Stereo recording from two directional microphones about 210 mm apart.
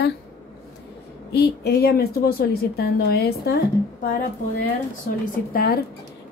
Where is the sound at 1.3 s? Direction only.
50° left (ahead or behind).